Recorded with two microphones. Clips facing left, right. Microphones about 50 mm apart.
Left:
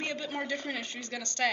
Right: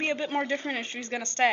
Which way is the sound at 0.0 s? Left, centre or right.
Right.